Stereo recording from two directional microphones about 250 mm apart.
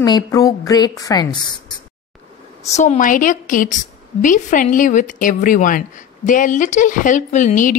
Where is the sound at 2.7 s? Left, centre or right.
Left.